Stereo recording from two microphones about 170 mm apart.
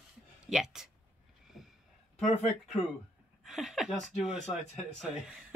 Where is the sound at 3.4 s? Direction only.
Centre (ahead or behind).